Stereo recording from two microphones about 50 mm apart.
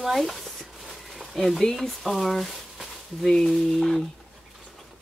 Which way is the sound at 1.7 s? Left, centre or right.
Centre.